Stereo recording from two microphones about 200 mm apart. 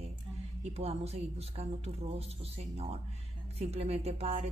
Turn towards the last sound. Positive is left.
turn(degrees=-30)  # may be behind; listen again after turning